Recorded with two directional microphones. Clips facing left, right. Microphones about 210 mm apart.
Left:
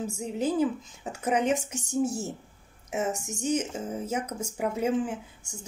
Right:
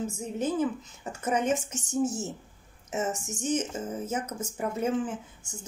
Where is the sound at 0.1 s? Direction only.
10° left (ahead or behind).